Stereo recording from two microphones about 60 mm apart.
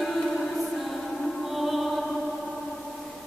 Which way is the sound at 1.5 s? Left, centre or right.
Centre.